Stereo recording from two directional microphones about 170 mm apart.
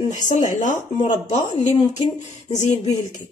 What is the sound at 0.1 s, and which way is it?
A woman's voice, 45° left (ahead or behind).